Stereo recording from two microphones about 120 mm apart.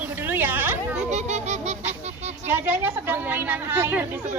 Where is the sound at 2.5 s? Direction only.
15° right (ahead or behind).